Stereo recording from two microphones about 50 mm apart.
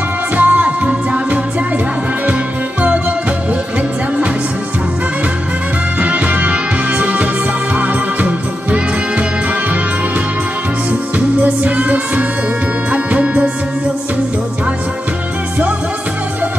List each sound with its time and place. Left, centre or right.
0.4 s music: right
5.9 s music: right
11.1 s music: right